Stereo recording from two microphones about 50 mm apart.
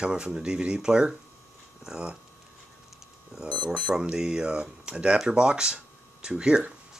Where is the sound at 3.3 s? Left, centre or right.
Centre.